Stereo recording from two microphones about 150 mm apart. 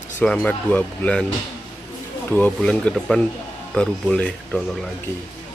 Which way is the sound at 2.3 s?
10° left (ahead or behind).